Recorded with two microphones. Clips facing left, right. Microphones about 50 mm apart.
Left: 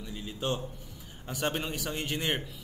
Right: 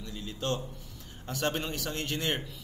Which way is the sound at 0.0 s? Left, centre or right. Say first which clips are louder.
Left 1 dB; centre.